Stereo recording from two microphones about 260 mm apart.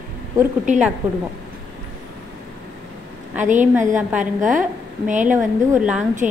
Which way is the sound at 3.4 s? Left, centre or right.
Right.